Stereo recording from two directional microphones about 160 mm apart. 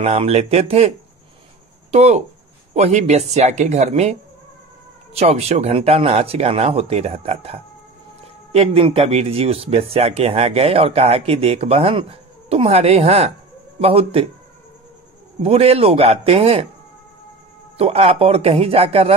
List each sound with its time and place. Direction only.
0.0 s speech: 40° right (ahead or behind)
15.4 s speech: 40° right (ahead or behind)
17.7 s speech: 40° right (ahead or behind)